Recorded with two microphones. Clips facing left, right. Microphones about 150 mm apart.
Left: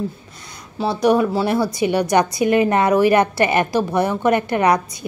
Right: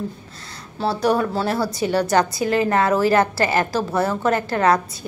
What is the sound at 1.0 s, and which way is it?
A woman's voice, 15° left (ahead or behind).